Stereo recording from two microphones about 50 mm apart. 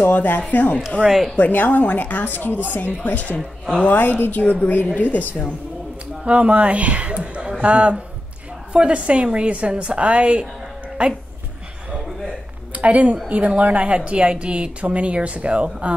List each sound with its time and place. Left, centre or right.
0.1 s a woman's voice: left
1.0 s speech: centre
1.3 s a woman's voice: left
6.2 s a man's voice: right
11.9 s a sound: right
13.3 s speech: right